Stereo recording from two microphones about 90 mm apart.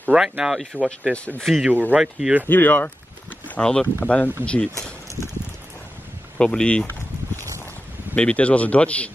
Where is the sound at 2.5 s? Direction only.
20° left (ahead or behind).